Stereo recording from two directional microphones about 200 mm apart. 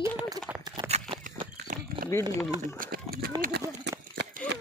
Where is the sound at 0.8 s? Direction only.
30° right (ahead or behind).